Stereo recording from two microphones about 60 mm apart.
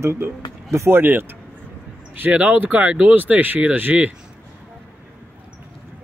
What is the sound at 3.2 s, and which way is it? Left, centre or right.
Speech, right.